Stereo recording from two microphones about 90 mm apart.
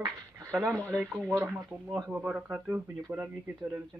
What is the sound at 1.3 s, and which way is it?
Speech, 25° right (ahead or behind).